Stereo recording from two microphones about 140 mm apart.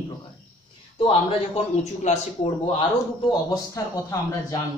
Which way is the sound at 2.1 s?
55° left (ahead or behind).